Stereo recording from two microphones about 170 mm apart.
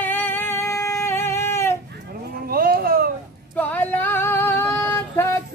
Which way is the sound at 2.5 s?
60° right (ahead or behind).